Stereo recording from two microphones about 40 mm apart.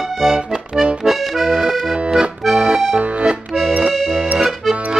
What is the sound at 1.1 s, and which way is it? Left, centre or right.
Accordion, centre.